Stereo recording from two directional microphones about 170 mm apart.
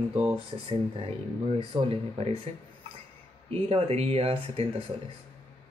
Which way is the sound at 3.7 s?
35° right (ahead or behind).